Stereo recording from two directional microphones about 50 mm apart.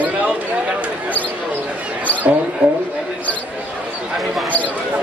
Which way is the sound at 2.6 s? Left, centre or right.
Right.